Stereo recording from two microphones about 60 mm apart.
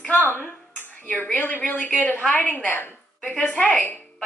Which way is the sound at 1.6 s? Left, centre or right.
Left.